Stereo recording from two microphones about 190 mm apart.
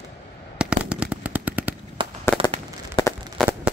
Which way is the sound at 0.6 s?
5° right (ahead or behind).